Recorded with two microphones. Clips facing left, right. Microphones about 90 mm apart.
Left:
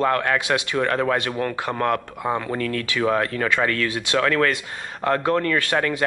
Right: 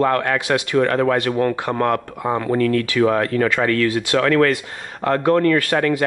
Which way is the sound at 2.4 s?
50° right (ahead or behind).